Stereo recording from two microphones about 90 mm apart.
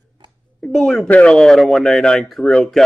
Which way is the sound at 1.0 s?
10° left (ahead or behind).